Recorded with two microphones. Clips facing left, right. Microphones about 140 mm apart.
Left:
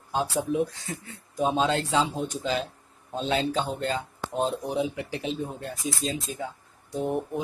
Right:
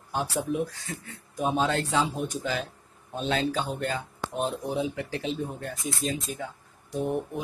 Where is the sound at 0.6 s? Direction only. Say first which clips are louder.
Left 3 dB; 25° left (ahead or behind).